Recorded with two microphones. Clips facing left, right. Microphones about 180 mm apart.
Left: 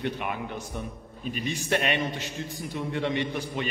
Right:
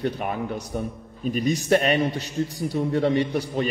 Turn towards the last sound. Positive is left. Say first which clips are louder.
# right 6 dB
turn(degrees=-40)  # may be behind; listen again after turning